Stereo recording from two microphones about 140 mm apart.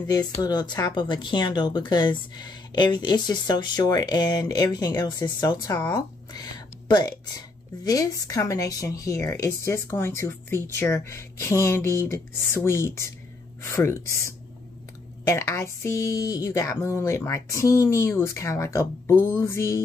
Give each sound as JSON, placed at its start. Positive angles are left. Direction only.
{"t": 0.0, "sound": "speech", "side_deg": 30}